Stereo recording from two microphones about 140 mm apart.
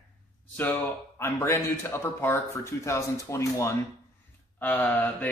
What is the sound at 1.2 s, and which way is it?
Speech, 15° left (ahead or behind).